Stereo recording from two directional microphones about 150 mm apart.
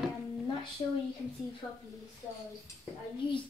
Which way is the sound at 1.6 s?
20° left (ahead or behind).